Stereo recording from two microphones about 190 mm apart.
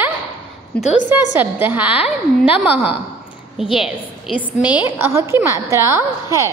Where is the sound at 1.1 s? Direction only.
10° right (ahead or behind).